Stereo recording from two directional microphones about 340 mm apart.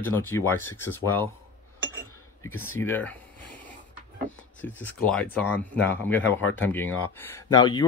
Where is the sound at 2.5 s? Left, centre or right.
Left.